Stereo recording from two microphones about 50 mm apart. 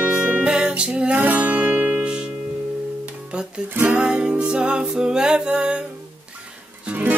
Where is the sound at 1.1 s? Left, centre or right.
Right.